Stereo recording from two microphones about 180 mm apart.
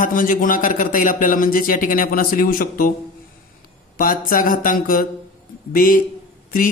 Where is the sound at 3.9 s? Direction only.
50° left (ahead or behind).